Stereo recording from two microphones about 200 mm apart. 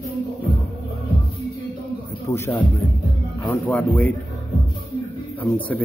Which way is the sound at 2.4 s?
10° left (ahead or behind).